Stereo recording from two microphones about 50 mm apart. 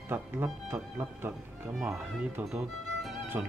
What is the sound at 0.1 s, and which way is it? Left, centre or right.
Speech, right.